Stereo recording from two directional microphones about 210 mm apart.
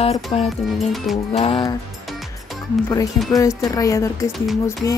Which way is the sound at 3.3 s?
15° left (ahead or behind).